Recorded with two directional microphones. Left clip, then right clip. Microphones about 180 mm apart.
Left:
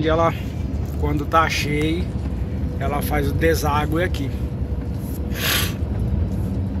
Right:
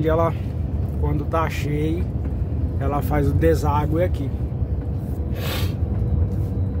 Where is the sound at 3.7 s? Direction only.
10° right (ahead or behind).